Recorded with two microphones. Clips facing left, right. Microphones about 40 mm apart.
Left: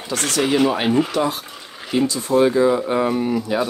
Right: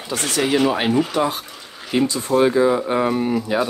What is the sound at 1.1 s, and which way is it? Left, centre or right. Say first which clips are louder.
Speech: even; centre.